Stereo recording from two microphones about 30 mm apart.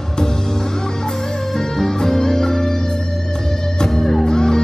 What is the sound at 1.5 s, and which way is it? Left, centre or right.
Music, left.